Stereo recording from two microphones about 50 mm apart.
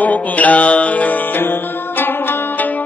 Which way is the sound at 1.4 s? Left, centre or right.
Left.